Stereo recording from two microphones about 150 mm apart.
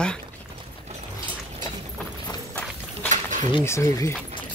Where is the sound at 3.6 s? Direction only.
20° left (ahead or behind).